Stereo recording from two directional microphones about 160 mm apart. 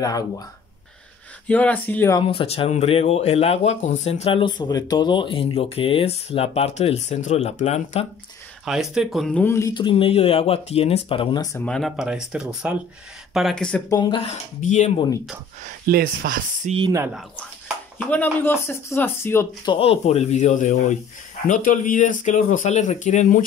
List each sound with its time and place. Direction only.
1.5 s speech: 10° left (ahead or behind)
2.1 s speech: 35° left (ahead or behind)
8.6 s speech: centre (ahead or behind); by 9.7 s 15° left (ahead or behind)
9.8 s speech: 30° left (ahead or behind)
11.6 s speech: 5° left (ahead or behind)
13.8 s speech: 25° left (ahead or behind)
14.2 s speech: 45° left (ahead or behind)
15.6 s speech: 70° right (ahead or behind)
18.1 s speech: 10° left (ahead or behind)
19.6 s speech: 30° left (ahead or behind); by 23.4 s 50° left (ahead or behind)